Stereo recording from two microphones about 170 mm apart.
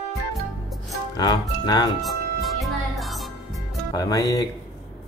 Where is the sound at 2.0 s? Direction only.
Centre (ahead or behind).